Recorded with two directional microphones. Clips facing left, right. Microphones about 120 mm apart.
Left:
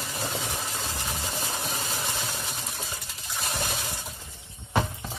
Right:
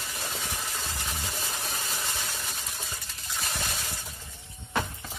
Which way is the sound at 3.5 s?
20° left (ahead or behind).